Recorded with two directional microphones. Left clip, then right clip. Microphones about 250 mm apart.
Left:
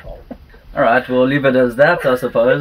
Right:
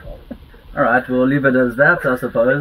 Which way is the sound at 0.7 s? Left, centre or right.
Centre.